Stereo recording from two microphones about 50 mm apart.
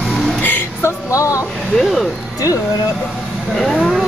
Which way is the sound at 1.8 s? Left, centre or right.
Centre.